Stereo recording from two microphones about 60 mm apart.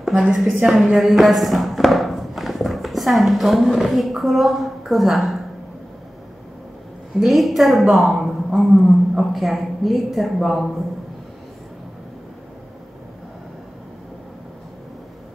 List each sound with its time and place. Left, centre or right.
0.0 s a woman's voice: centre
7.2 s speech: centre